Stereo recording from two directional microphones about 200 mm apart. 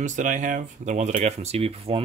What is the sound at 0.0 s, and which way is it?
Speech, 40° right (ahead or behind).